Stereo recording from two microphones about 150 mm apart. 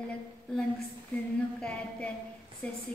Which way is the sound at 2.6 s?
10° left (ahead or behind).